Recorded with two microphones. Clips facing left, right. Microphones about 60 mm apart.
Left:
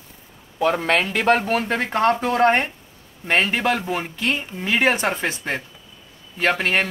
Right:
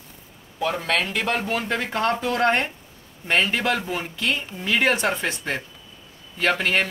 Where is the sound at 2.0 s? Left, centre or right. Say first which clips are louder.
Left 5 dB; left.